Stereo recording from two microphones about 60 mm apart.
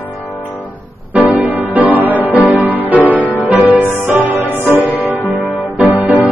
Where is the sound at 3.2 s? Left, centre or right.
Left.